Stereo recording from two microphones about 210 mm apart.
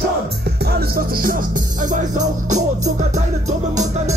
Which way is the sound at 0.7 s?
45° right (ahead or behind).